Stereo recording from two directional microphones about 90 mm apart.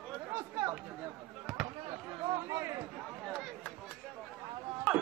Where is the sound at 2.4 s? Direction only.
30° right (ahead or behind).